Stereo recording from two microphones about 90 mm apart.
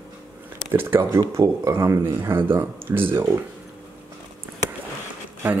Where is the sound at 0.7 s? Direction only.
25° right (ahead or behind).